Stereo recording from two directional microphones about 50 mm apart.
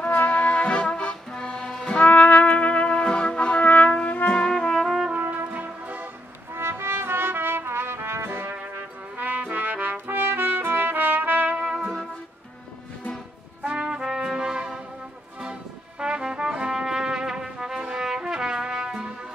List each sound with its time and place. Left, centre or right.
0.0 s music: left
2.0 s trumpet: left
4.3 s brass instrument: centre
5.5 s music: right
6.5 s brass instrument: right
9.2 s trumpet: right
11.5 s music: centre
13.7 s trumpet: centre
16.0 s brass instrument: centre